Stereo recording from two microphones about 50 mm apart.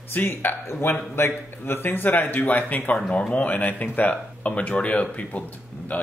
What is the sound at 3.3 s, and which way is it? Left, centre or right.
Speech, left.